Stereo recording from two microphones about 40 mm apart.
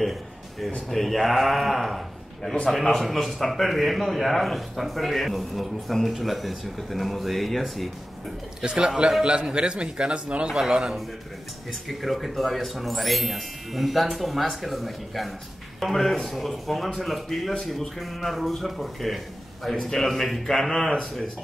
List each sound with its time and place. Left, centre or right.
0.0 s a sound: centre
0.8 s a man's voice: centre
8.6 s a man's voice: right
11.9 s a man's voice: centre